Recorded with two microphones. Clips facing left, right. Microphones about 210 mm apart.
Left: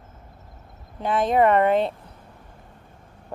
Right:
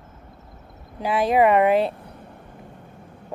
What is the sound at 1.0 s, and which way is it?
Speech, 5° right (ahead or behind).